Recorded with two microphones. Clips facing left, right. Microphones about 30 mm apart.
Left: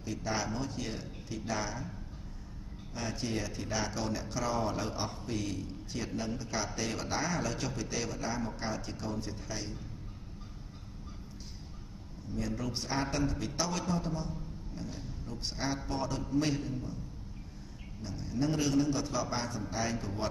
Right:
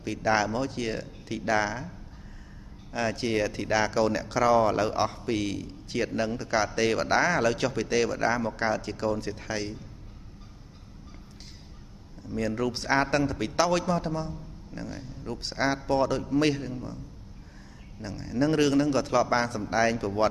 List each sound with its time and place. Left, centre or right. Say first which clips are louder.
0.0 s a man's voice: right 10 dB; right
2.9 s a man's voice: right 9 dB; right
12.4 s a man's voice: right 8 dB; right
12.7 s speech: right 9 dB; right
18.0 s a man's voice: right 7 dB; right